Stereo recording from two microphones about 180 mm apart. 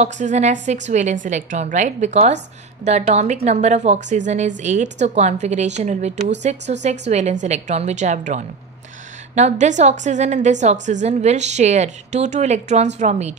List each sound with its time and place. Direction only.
0.0 s a woman's voice: 40° right (ahead or behind)